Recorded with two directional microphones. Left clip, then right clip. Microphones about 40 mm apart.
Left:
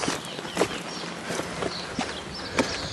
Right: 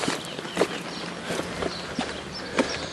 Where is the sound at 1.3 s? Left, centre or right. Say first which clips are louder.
Right 1 dB; right.